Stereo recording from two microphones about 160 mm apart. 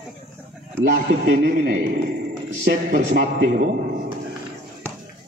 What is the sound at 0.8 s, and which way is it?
A man's voice, 65° right (ahead or behind).